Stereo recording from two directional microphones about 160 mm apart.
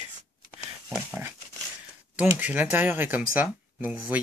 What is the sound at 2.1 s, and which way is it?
Speech, 10° right (ahead or behind).